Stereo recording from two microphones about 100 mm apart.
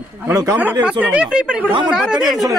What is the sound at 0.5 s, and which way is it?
A woman's voice, 15° right (ahead or behind).